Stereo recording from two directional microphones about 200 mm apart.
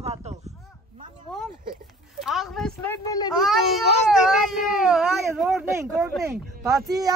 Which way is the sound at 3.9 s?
30° left (ahead or behind).